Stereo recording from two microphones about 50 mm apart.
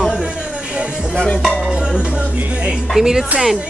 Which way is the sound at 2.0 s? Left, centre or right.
Right.